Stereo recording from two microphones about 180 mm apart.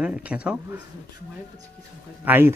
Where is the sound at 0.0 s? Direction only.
5° right (ahead or behind).